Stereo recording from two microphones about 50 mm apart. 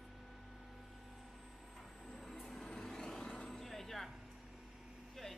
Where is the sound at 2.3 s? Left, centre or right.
Centre.